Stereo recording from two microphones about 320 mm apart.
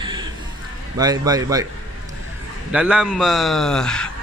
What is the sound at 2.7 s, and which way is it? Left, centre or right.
A man's voice, centre.